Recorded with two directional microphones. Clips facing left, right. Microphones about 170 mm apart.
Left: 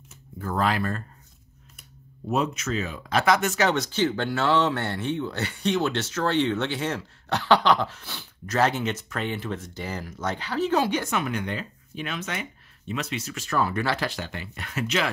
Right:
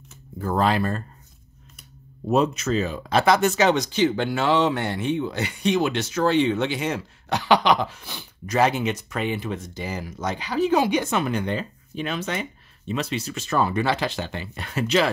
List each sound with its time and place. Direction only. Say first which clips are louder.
0.4 s speech: right 4 dB; 30° right (ahead or behind)
2.2 s speech: right 5 dB; 35° right (ahead or behind)
3.6 s speech: right 4 dB; 15° right (ahead or behind)
11.1 s speech: right 4 dB; 30° right (ahead or behind)